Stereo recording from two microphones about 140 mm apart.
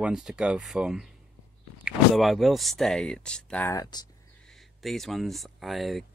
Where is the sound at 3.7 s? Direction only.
25° left (ahead or behind).